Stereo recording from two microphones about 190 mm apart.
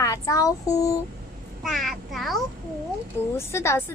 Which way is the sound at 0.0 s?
15° left (ahead or behind).